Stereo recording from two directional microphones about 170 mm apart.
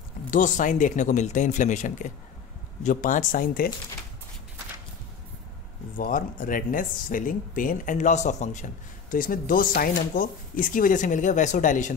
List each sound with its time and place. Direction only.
0.3 s speech: 50° left (ahead or behind)
5.9 s speech: 55° left (ahead or behind)